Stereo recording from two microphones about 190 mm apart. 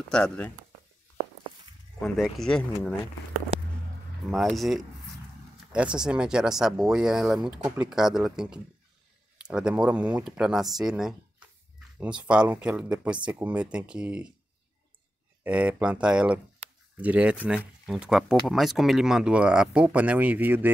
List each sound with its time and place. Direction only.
0.1 s speech: 5° left (ahead or behind)
2.0 s speech: centre (ahead or behind)
3.5 s a sound: 35° right (ahead or behind)
4.3 s speech: centre (ahead or behind)
15.4 s speech: 5° right (ahead or behind)